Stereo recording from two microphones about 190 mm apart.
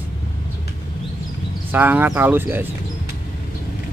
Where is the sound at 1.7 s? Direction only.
10° right (ahead or behind).